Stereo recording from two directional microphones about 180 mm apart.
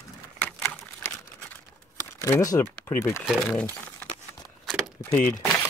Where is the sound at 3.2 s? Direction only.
Centre (ahead or behind).